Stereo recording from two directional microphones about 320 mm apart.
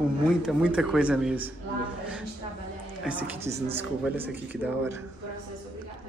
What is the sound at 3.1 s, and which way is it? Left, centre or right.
Speech, centre.